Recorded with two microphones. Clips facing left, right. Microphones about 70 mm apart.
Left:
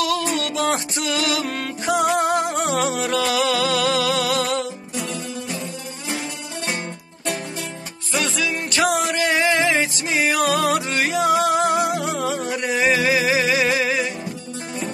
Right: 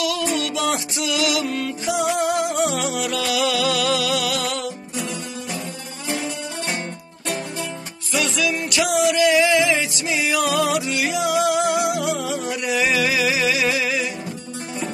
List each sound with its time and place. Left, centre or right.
0.0 s music: left
8.1 s music: left